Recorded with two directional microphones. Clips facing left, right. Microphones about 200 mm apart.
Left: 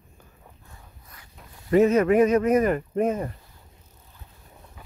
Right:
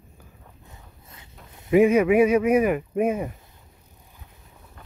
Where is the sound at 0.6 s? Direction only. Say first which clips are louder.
Right 2 dB; 20° right (ahead or behind).